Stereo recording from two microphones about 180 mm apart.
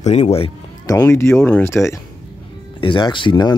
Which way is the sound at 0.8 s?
15° left (ahead or behind).